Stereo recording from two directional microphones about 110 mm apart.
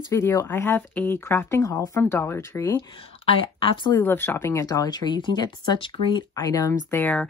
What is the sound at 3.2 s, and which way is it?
Speech, 50° left (ahead or behind).